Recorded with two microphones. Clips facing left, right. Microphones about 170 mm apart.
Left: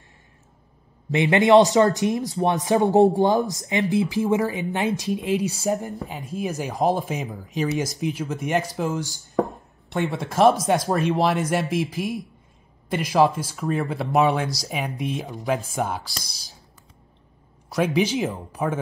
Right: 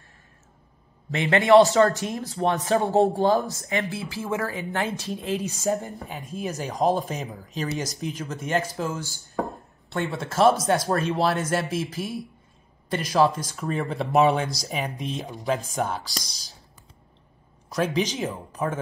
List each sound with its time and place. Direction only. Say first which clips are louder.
1.1 s speech: left 1 dB; 20° left (ahead or behind)
17.7 s speech: left 3 dB; 15° left (ahead or behind)